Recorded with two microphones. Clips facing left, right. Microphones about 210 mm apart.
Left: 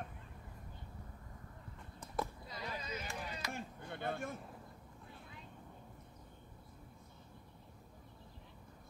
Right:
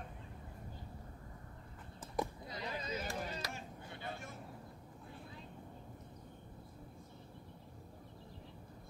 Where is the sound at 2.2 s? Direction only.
15° right (ahead or behind).